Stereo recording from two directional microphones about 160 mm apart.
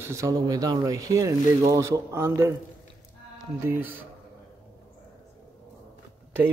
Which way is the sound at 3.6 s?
15° right (ahead or behind).